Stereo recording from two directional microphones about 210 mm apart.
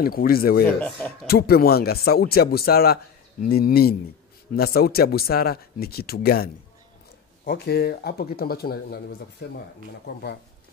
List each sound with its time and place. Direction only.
0.0 s speech: 45° left (ahead or behind)